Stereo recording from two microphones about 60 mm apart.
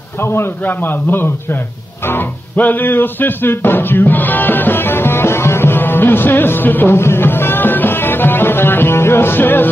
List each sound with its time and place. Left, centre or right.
0.2 s a man's voice: left
2.0 s music: left